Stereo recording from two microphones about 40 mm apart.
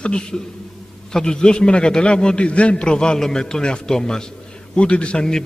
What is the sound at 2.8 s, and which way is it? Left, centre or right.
A man's voice, left.